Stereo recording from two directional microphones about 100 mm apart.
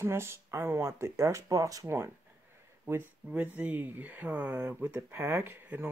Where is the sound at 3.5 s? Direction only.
15° right (ahead or behind).